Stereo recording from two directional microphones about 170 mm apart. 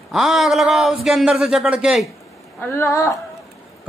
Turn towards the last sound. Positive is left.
turn(degrees=15)  # may be behind; listen again after turning